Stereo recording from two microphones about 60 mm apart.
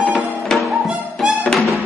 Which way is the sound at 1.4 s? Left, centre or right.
Centre.